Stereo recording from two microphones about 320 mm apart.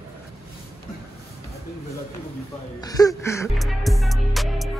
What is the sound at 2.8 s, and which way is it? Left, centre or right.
Music, centre.